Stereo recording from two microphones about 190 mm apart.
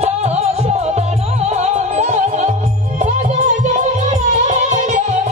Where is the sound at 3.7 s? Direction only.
40° right (ahead or behind).